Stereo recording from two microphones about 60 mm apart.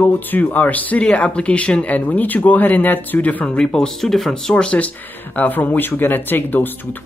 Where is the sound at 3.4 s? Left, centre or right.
Centre.